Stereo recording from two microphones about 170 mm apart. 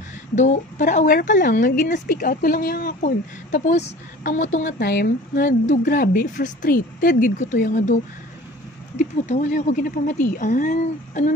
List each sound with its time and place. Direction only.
0.4 s a woman's voice: 45° left (ahead or behind)
4.7 s speech: 70° left (ahead or behind)
5.7 s a woman's voice: 55° left (ahead or behind)